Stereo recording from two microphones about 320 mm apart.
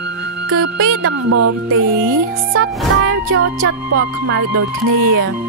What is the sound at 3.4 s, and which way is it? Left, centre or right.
Music, right.